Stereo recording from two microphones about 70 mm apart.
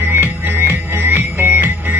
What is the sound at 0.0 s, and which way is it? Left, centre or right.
Music, right.